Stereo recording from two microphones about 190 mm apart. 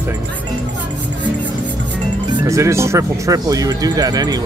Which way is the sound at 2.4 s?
15° right (ahead or behind).